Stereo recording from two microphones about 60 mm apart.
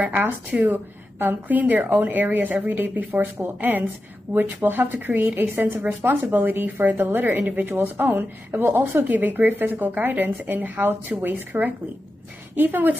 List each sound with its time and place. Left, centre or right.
0.0 s speech: right